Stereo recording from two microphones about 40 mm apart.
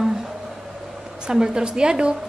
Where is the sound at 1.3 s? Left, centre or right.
Centre.